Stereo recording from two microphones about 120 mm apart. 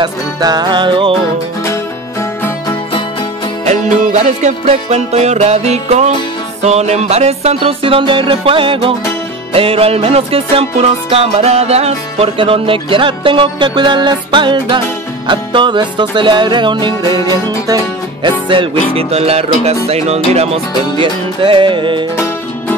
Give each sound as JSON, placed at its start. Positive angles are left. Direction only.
{"t": 0.0, "sound": "music", "side_deg": -35}
{"t": 3.6, "sound": "music", "side_deg": -75}
{"t": 18.5, "sound": "music", "side_deg": -50}
{"t": 21.0, "sound": "music", "side_deg": -45}
{"t": 22.1, "sound": "music", "side_deg": 20}